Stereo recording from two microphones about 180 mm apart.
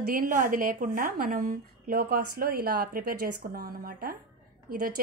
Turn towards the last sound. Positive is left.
turn(degrees=-55)  # may be behind; listen again after turning